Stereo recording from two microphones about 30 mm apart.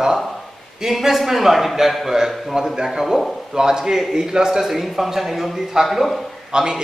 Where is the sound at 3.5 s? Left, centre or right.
Right.